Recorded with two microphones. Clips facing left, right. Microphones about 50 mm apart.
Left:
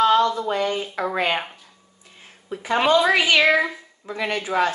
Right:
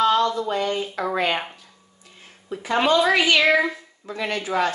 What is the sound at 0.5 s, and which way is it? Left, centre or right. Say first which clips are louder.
Speech: left 1 dB; centre.